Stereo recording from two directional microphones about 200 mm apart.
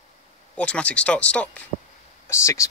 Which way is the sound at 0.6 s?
5° left (ahead or behind).